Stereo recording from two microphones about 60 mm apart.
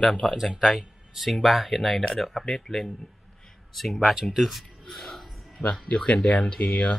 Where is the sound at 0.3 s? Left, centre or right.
Centre.